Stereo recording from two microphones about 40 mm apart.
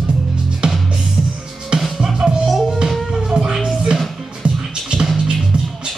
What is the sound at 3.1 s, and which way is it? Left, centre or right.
Music, centre.